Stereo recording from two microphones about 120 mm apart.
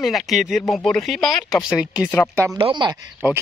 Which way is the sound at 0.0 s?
Centre (ahead or behind).